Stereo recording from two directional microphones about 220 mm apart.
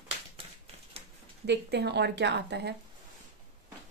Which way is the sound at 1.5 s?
50° right (ahead or behind).